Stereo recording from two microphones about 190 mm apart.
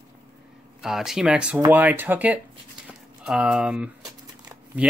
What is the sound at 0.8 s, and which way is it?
Speech, centre (ahead or behind).